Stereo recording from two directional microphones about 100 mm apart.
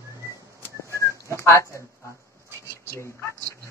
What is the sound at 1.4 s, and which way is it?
Speech, 30° left (ahead or behind).